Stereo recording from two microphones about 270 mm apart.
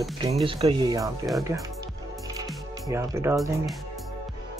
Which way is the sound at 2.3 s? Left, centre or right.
Centre.